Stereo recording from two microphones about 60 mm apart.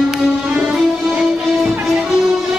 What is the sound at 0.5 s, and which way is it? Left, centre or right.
Music, centre.